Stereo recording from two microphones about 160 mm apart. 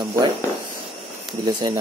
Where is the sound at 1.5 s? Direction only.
30° right (ahead or behind).